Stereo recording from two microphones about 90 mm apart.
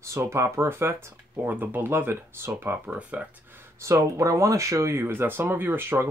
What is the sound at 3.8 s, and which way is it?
Speech, 35° right (ahead or behind).